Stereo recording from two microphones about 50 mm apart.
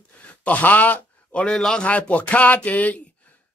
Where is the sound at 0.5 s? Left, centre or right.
Left.